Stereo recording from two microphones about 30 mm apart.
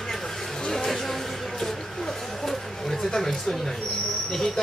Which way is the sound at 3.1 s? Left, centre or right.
Centre.